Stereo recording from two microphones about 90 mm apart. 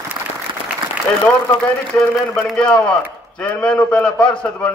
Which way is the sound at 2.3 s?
10° left (ahead or behind).